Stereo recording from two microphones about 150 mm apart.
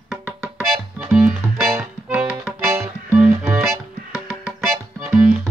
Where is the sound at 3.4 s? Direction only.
Centre (ahead or behind).